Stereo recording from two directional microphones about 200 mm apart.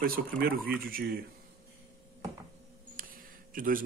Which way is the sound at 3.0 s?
45° right (ahead or behind).